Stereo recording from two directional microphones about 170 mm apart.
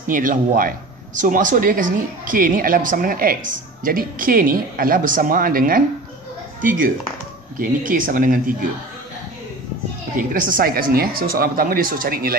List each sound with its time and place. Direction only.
0.0 s speech: 50° right (ahead or behind)
7.5 s speech: 55° right (ahead or behind)
10.1 s speech: 50° right (ahead or behind)